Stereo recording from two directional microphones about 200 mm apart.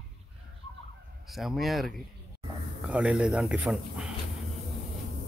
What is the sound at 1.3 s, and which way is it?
Speech, centre (ahead or behind).